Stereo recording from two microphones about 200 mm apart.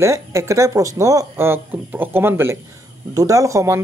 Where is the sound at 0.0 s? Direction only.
15° right (ahead or behind).